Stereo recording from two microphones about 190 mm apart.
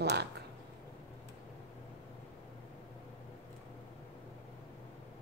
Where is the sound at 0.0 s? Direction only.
60° right (ahead or behind).